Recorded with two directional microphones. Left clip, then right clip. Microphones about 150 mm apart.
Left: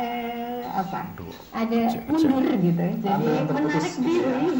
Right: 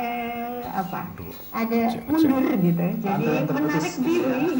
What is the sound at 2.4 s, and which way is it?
Speech, 30° right (ahead or behind).